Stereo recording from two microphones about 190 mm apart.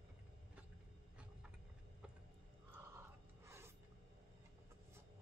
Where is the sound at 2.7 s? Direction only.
15° right (ahead or behind).